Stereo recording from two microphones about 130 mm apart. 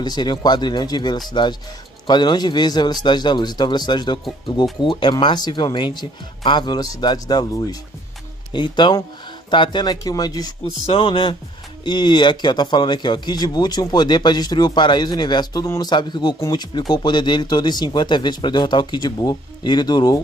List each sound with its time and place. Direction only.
0.0 s speech: 35° left (ahead or behind)
10.9 s speech: 45° left (ahead or behind)
15.6 s speech: 20° left (ahead or behind)
15.9 s speech: 35° left (ahead or behind)